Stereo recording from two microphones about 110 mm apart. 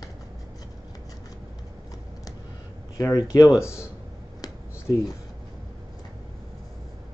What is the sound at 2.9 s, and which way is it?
Speech, 35° left (ahead or behind).